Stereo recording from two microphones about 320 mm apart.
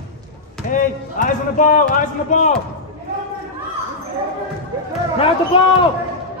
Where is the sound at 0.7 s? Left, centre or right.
Left.